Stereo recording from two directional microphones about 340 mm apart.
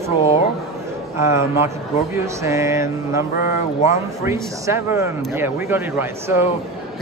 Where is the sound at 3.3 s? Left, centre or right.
Left.